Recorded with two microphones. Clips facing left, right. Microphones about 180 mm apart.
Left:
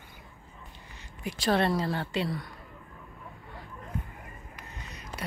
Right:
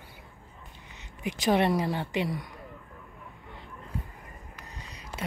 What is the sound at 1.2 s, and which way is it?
Speech, 15° right (ahead or behind).